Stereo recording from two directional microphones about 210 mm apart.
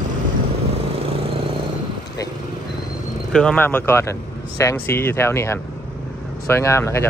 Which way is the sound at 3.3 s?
5° left (ahead or behind).